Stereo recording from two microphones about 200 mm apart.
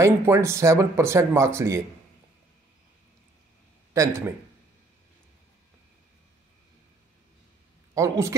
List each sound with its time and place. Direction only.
0.0 s speech: 15° right (ahead or behind)
3.9 s a man's voice: 15° right (ahead or behind)
7.9 s speech: 15° right (ahead or behind)